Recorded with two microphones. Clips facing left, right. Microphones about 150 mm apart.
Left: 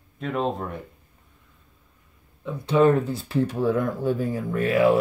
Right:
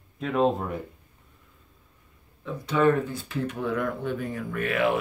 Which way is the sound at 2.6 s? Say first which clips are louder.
Left 4 dB; 25° left (ahead or behind).